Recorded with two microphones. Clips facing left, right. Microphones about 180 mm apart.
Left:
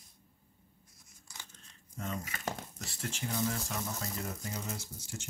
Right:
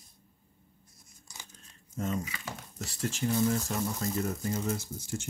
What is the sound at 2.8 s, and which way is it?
Speech, 40° right (ahead or behind).